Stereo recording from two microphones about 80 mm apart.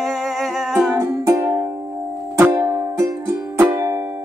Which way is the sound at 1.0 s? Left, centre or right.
Right.